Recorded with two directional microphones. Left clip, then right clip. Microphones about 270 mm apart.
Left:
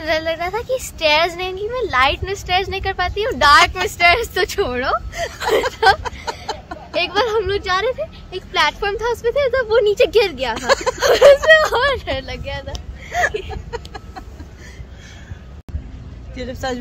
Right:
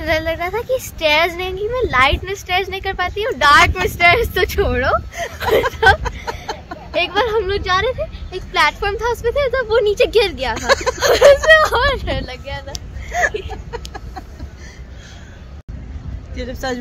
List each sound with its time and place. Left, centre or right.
0.0 s a woman's voice: centre
6.4 s a sound: centre
6.9 s speech: centre
10.5 s speech: centre
11.0 s speech: centre
13.1 s a woman's voice: centre
13.7 s a sound: centre
16.3 s a woman's voice: centre